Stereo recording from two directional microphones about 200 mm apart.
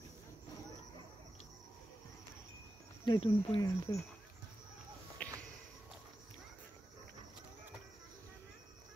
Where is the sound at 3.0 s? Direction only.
25° left (ahead or behind).